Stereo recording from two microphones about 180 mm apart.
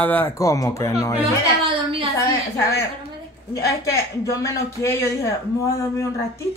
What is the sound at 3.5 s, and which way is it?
Speech, 20° left (ahead or behind).